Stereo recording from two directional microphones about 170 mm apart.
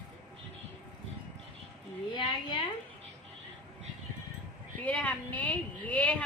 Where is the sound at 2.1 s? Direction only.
30° left (ahead or behind).